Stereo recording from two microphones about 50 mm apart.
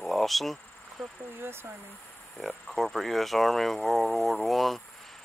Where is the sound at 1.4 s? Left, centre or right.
Right.